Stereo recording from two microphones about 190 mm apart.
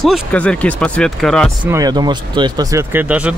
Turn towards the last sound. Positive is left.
turn(degrees=-5)  # may be behind; listen again after turning